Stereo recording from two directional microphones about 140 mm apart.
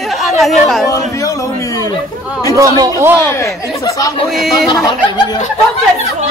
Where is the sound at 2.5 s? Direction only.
25° right (ahead or behind).